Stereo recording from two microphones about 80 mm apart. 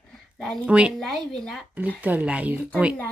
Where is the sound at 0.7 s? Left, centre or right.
Centre.